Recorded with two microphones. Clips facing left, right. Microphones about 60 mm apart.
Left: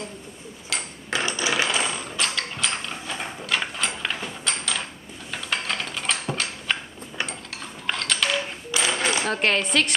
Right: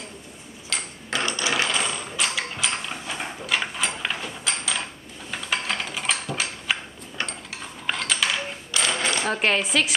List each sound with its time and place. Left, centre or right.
0.7 s a sound: centre
1.2 s coin: centre
1.6 s mechanisms: centre
5.3 s a sound: centre
7.8 s typing: centre
8.7 s coin: centre